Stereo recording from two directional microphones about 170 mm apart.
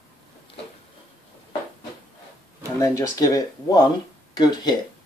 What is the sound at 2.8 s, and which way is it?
Speech, 20° left (ahead or behind).